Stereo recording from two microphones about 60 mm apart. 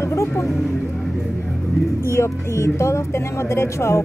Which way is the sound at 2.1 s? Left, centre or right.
Left.